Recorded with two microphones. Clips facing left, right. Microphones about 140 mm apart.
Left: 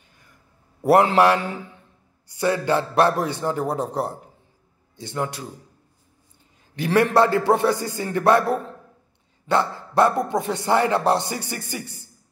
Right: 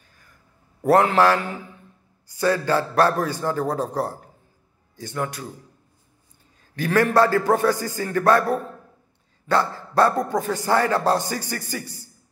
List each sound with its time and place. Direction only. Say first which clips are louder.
0.8 s speech: left 1 dB; 25° left (ahead or behind)
6.7 s speech: left 1 dB; 20° left (ahead or behind)